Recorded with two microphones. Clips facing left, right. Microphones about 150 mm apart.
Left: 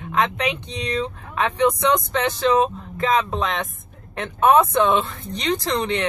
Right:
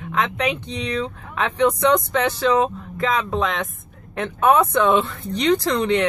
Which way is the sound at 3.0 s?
20° left (ahead or behind).